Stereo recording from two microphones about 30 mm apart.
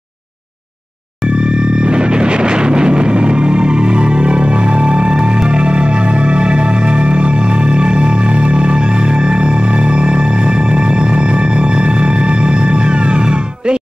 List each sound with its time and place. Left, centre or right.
1.8 s music: right